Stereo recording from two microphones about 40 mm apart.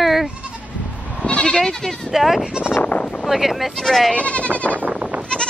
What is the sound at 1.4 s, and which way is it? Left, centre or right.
Speech, centre.